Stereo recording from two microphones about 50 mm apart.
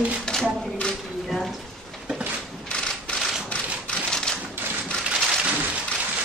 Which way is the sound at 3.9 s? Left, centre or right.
Centre.